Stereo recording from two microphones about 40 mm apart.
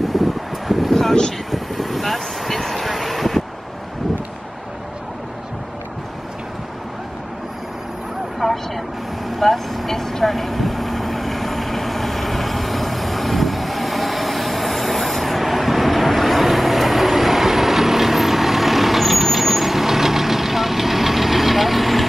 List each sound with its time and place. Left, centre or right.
0.0 s vehicle: centre
8.4 s vehicle: centre